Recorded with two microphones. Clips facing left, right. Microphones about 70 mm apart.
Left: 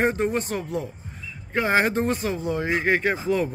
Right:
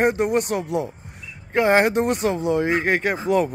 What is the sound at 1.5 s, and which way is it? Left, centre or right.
Speech, right.